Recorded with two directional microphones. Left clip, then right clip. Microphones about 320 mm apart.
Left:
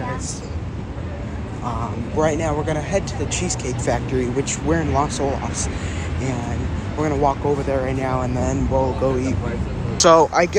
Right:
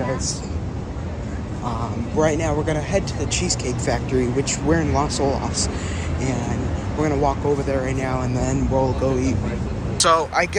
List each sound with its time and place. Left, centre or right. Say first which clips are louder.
1.7 s speech: left 1 dB; centre
7.0 s speech: left 1 dB; centre
9.9 s speech: left 4 dB; left